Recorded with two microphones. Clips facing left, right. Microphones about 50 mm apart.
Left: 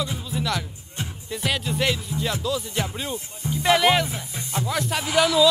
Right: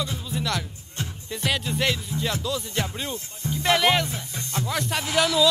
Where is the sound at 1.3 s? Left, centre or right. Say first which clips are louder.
Left 1 dB; centre.